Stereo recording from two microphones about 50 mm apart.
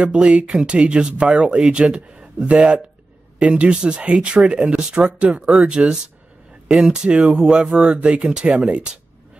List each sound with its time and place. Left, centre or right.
0.0 s a man's voice: right